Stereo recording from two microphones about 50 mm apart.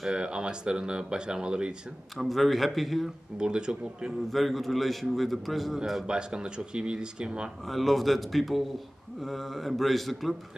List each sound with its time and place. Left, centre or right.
0.1 s speech: centre
2.1 s a man's voice: centre
3.3 s speech: centre
4.3 s a man's voice: centre
6.0 s speech: centre
7.6 s a man's voice: centre